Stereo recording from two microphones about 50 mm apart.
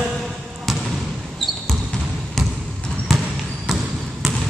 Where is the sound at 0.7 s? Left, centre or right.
Centre.